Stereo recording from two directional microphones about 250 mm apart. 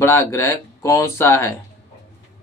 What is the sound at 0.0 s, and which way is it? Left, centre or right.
Speech, centre.